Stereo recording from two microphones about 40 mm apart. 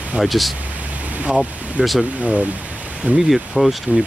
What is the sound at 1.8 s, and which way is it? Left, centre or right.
Speech, right.